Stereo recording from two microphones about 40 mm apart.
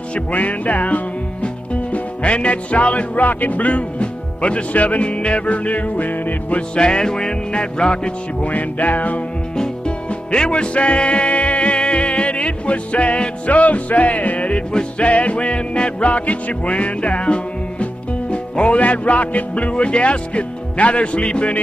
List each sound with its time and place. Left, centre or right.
0.1 s music: left
6.7 s music: left
8.4 s music: left
9.6 s music: left
14.7 s music: left
15.0 s music: left